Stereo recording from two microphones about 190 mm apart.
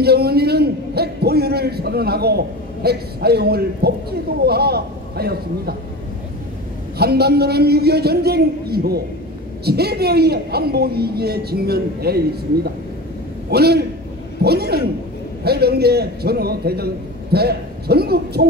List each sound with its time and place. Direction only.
0.0 s a man's voice: 55° right (ahead or behind)
7.0 s a man's voice: 55° right (ahead or behind)
13.5 s a man's voice: 55° right (ahead or behind)